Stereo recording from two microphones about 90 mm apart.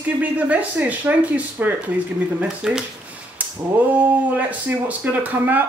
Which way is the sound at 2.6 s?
5° right (ahead or behind).